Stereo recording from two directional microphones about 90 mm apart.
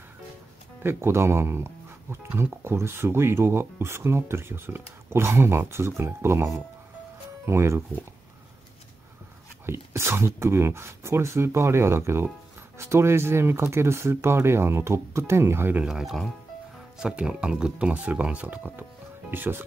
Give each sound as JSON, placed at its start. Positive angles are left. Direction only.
{"t": 0.8, "sound": "speech", "side_deg": -30}
{"t": 9.7, "sound": "speech", "side_deg": -30}
{"t": 15.8, "sound": "speech", "side_deg": -5}